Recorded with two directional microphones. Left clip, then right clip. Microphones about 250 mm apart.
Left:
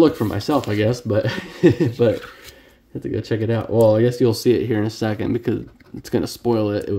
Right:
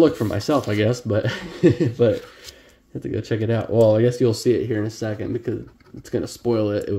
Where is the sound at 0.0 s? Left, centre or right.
Centre.